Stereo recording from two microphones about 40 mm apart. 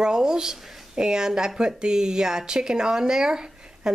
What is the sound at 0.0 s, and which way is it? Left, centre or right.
Speech, centre.